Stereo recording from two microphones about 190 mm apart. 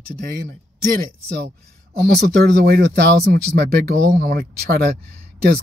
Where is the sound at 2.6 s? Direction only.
50° right (ahead or behind).